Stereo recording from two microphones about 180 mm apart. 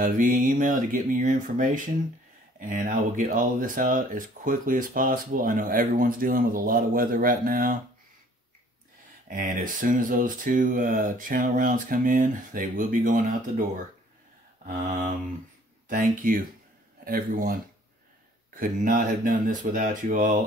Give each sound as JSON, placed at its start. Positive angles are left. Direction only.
{"t": 0.0, "sound": "speech", "side_deg": -50}
{"t": 9.3, "sound": "speech", "side_deg": -45}
{"t": 15.9, "sound": "speech", "side_deg": -50}